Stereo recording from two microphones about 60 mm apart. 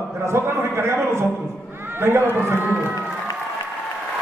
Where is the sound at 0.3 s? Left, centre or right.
Right.